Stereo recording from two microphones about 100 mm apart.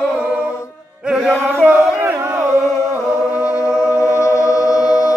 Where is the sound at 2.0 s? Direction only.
25° right (ahead or behind).